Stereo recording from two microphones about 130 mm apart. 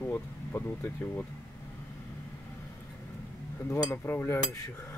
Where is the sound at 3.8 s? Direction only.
20° left (ahead or behind).